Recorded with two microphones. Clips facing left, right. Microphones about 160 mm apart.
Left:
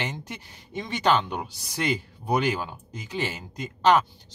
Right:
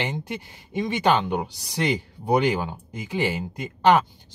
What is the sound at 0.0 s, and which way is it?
Speech, 15° right (ahead or behind).